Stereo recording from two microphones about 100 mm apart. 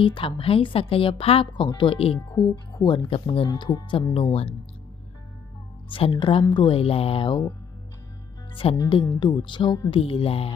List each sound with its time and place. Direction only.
0.0 s a woman's voice: 60° left (ahead or behind)
2.1 s speech: 40° left (ahead or behind)
3.1 s music: 70° left (ahead or behind)
3.4 s speech: 45° left (ahead or behind)
4.1 s music: 75° left (ahead or behind)
5.9 s a woman's voice: 60° left (ahead or behind)
6.8 s music: 75° left (ahead or behind)
8.6 s music: 70° left (ahead or behind)
9.2 s speech: 50° left (ahead or behind)
9.8 s music: 65° left (ahead or behind)